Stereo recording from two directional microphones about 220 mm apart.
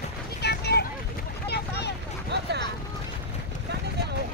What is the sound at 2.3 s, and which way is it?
Vehicle, 50° right (ahead or behind).